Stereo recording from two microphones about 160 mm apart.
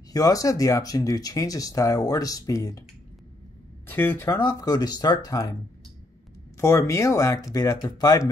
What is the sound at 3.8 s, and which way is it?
Speech, 15° left (ahead or behind).